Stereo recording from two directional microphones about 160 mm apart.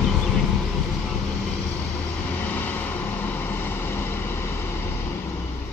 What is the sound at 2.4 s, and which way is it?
Vehicle, 10° left (ahead or behind).